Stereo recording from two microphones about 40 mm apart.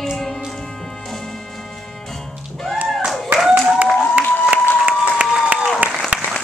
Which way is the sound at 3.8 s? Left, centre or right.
Right.